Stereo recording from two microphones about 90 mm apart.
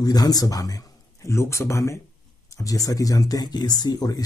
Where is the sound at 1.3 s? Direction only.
30° left (ahead or behind).